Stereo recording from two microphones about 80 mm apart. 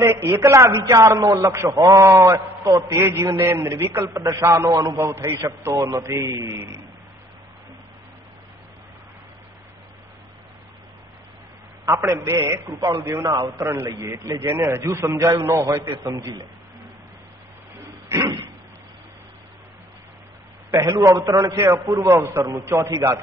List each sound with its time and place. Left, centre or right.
0.0 s a man's voice: right
2.0 s a man's voice: right
3.8 s a man's voice: right
4.1 s a man's voice: right
6.2 s a man's voice: right
12.1 s a man's voice: right
12.5 s a man's voice: right
20.8 s a man's voice: right
22.0 s a man's voice: right